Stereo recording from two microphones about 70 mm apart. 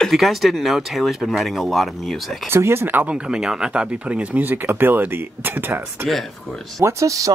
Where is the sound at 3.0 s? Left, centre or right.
Centre; by 6.1 s right.